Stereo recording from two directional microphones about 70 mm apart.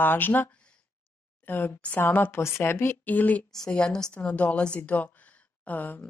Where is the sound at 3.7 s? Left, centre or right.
Centre.